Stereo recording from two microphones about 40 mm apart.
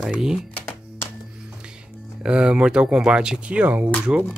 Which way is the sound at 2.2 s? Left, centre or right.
Right.